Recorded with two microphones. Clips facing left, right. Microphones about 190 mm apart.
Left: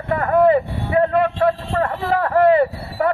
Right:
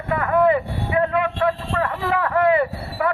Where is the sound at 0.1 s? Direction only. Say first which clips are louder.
Left 3 dB; 35° left (ahead or behind).